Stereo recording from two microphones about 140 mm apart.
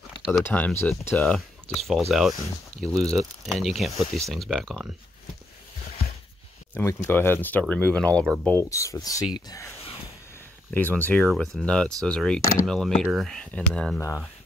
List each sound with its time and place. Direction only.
0.3 s speech: 15° left (ahead or behind)
6.7 s speech: 15° left (ahead or behind)
8.5 s speech: 20° left (ahead or behind)
10.7 s speech: 15° left (ahead or behind)